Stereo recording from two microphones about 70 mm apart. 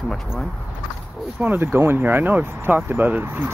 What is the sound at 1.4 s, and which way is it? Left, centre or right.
Speech, right.